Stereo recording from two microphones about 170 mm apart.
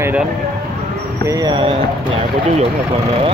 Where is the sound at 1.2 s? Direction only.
25° right (ahead or behind).